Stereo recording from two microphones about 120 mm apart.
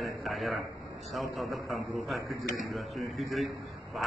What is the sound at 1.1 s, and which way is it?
A man's voice, centre (ahead or behind).